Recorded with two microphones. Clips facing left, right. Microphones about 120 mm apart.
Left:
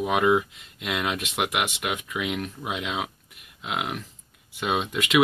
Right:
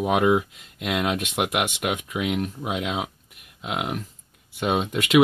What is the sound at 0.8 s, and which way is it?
Speech, 45° right (ahead or behind).